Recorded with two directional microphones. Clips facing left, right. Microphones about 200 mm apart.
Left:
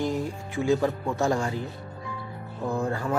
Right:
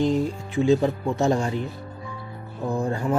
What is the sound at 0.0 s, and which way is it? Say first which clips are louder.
Speech: right 6 dB; 20° right (ahead or behind).